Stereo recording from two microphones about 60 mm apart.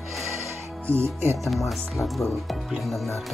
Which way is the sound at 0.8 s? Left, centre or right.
Right.